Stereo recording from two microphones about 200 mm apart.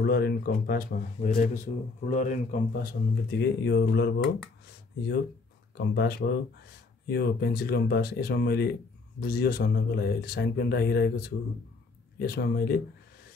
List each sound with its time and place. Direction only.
0.0 s speech: 50° left (ahead or behind)